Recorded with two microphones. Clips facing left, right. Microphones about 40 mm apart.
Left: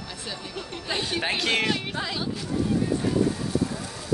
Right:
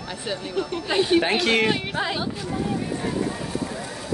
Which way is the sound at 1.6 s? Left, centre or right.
Right.